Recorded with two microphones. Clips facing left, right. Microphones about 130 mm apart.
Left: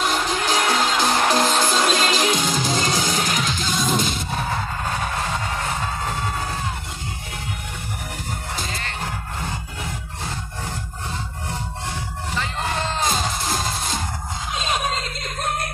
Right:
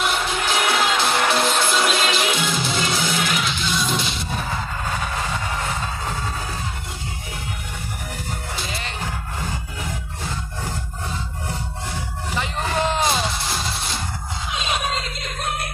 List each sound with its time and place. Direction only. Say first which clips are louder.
0.0 s music: left 1 dB; 40° left (ahead or behind)
12.4 s music: right 3 dB; 15° right (ahead or behind)
14.5 s a sound: left 1 dB; 40° left (ahead or behind)